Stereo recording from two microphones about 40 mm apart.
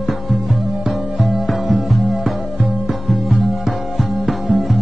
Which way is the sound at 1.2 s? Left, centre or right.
Centre.